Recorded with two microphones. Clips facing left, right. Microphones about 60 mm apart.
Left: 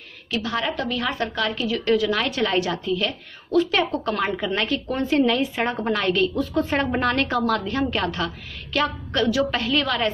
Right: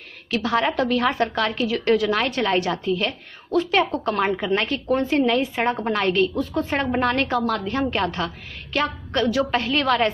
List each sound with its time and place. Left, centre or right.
0.3 s a woman's voice: right